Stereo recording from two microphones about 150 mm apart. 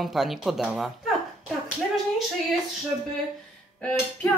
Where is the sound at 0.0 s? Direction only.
Centre (ahead or behind).